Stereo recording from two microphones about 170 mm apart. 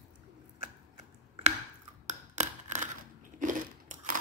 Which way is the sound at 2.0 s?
45° right (ahead or behind).